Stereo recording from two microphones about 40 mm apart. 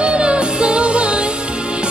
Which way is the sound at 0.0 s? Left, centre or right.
Right.